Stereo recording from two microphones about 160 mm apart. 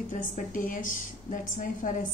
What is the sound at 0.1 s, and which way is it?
A woman's voice, 55° left (ahead or behind).